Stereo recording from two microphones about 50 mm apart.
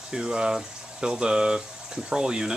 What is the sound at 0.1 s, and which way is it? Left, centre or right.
Speech, centre.